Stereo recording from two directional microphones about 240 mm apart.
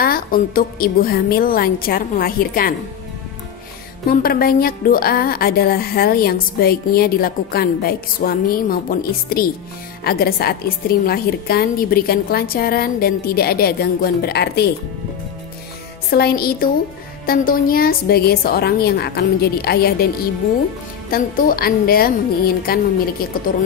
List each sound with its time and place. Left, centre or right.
0.0 s a woman's voice: left
4.1 s a woman's voice: left
16.1 s a woman's voice: left
21.1 s a woman's voice: left